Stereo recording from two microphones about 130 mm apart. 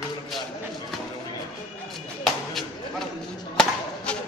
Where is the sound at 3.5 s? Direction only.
10° left (ahead or behind).